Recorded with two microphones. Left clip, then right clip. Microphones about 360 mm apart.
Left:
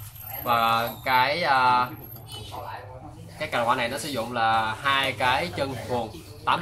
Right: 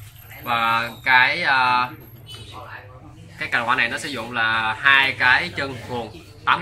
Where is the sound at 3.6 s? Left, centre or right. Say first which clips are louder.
Right 4 dB; centre.